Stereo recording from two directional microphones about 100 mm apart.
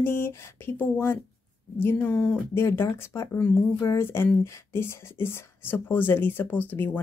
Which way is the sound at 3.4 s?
15° left (ahead or behind).